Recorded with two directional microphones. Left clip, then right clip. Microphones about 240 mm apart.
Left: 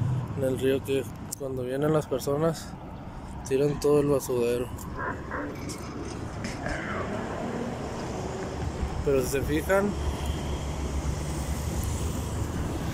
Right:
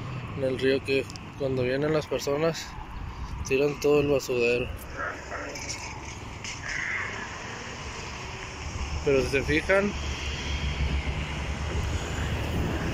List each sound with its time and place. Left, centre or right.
0.6 s speech: centre
5.0 s speech: left
6.4 s music: left
9.0 s speech: centre